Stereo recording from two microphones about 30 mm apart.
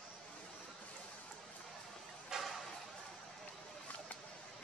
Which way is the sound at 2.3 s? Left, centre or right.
Right.